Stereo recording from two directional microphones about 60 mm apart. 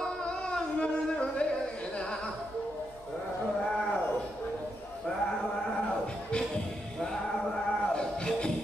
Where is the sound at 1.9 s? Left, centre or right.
Centre.